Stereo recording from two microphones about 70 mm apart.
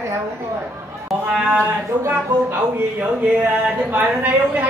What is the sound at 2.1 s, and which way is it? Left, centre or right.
Speech, right.